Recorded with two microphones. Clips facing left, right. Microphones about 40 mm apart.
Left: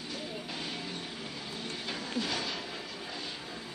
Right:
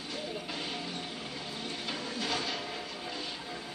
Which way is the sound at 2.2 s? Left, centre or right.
Centre.